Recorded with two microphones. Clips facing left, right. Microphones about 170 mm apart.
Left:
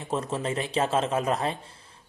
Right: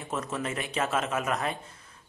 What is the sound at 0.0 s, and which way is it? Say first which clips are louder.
Speech: left 3 dB; 30° left (ahead or behind).